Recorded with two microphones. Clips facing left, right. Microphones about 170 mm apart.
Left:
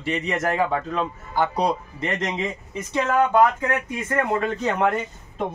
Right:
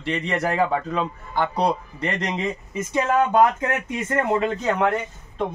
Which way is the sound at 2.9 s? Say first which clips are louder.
Even; 20° right (ahead or behind).